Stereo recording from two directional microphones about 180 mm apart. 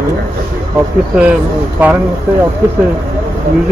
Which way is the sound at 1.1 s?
5° right (ahead or behind).